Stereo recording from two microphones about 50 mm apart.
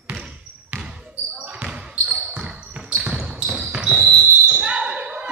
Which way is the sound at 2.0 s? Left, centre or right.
Right.